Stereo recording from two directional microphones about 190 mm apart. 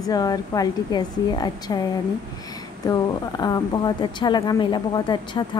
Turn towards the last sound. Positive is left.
turn(degrees=25)  # may be behind; listen again after turning